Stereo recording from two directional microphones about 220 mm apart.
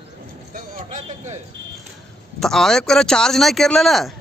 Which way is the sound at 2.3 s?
Centre (ahead or behind).